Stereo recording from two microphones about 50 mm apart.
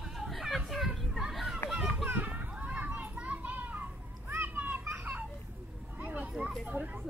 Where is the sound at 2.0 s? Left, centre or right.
Right.